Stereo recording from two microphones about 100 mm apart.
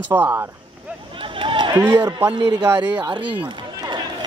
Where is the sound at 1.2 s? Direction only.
60° right (ahead or behind).